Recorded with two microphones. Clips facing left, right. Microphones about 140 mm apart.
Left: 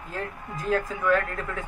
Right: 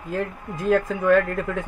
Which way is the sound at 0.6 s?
65° right (ahead or behind).